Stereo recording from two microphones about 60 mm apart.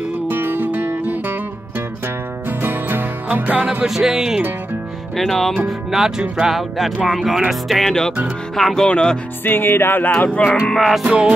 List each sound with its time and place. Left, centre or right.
0.3 s music: right
2.6 s music: right
3.8 s speech: centre
5.1 s speech: centre
5.7 s speech: centre
6.5 s speech: centre
8.8 s speech: centre
9.4 s music: left
10.4 s speech: centre
10.8 s speech: centre
11.1 s speech: centre